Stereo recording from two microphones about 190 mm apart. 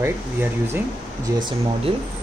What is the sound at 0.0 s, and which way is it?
Speech, 10° right (ahead or behind).